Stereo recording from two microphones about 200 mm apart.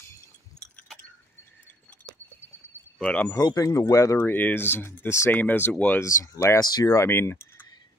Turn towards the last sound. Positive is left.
turn(degrees=10)  # may be behind; listen again after turning